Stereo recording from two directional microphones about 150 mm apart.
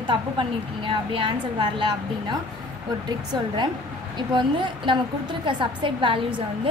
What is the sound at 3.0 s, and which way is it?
A woman's voice, 30° right (ahead or behind).